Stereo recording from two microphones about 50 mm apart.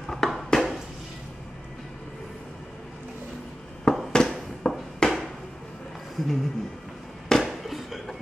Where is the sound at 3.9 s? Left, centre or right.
Centre.